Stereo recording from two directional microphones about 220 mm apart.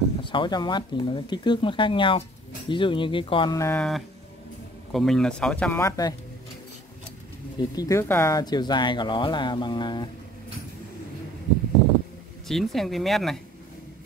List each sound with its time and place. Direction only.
0.2 s speech: 20° left (ahead or behind)
7.5 s speech: 15° left (ahead or behind)
12.4 s speech: centre (ahead or behind)